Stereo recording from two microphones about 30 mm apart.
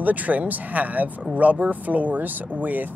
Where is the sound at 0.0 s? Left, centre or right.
Right.